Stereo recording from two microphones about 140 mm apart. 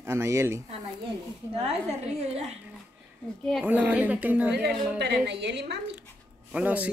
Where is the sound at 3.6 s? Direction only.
10° right (ahead or behind).